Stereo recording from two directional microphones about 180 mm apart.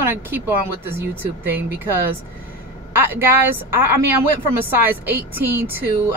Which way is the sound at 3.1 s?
10° right (ahead or behind).